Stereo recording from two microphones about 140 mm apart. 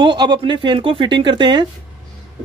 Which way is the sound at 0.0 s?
35° right (ahead or behind).